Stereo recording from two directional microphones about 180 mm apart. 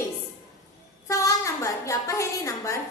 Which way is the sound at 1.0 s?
15° left (ahead or behind).